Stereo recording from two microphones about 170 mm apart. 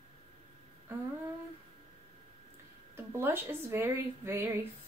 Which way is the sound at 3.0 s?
15° right (ahead or behind).